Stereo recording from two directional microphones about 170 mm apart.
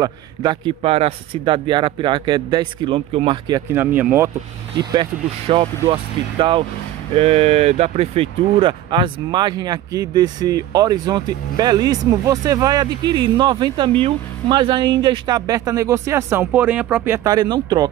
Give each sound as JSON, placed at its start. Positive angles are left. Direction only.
{"t": 0.0, "sound": "speech", "side_deg": -25}
{"t": 3.7, "sound": "speech", "side_deg": -10}
{"t": 5.6, "sound": "speech", "side_deg": -30}